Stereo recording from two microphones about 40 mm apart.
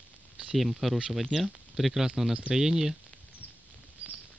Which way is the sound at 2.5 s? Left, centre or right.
Centre.